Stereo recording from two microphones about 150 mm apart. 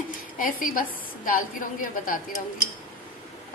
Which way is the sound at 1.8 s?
65° left (ahead or behind).